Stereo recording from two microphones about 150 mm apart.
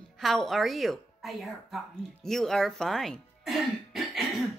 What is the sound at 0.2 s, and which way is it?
Speech, centre (ahead or behind).